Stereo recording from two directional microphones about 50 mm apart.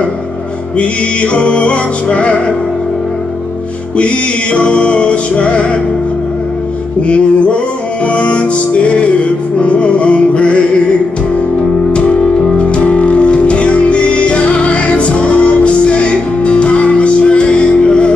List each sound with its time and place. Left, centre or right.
0.7 s music: left
3.9 s music: left
7.0 s music: left
11.9 s music: left